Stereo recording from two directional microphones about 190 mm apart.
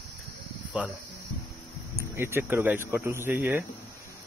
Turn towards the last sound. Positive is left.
turn(degrees=-10)  # may be behind; listen again after turning